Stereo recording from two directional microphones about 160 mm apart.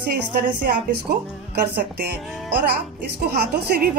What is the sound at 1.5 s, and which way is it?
Speech, 75° right (ahead or behind).